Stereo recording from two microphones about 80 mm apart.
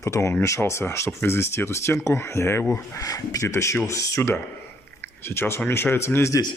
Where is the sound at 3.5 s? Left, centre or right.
Left.